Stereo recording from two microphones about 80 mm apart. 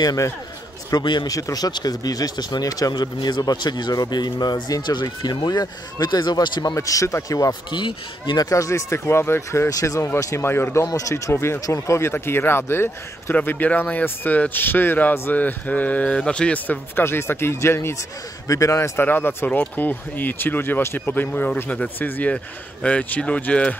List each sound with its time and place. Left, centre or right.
0.0 s a man's voice: left
0.9 s speech: left
1.3 s speech: left
6.7 s a man's voice: left
7.7 s speech: left
8.5 s speech: left
9.7 s speech: left
10.9 s a man's voice: left
19.0 s a man's voice: left